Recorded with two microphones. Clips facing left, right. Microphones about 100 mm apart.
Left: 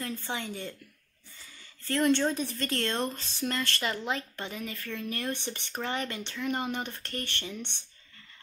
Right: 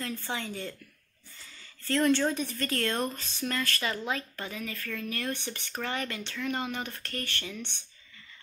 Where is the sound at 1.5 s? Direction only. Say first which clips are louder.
Right 2 dB; 15° left (ahead or behind).